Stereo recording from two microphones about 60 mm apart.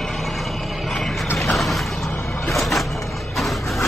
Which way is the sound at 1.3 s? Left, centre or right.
Centre.